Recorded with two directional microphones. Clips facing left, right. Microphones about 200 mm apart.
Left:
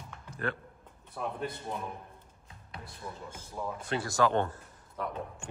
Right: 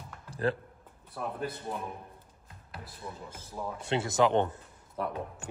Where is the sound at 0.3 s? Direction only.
35° right (ahead or behind).